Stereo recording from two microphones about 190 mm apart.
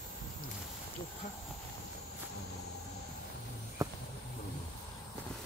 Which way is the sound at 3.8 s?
15° right (ahead or behind).